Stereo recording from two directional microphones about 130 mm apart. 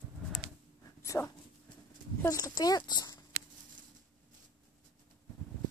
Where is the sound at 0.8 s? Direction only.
25° left (ahead or behind).